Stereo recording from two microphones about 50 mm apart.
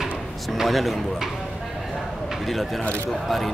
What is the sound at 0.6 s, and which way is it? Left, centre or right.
Speech, centre.